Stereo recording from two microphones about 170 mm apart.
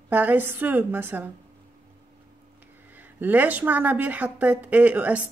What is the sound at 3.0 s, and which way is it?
A woman's voice, 10° right (ahead or behind).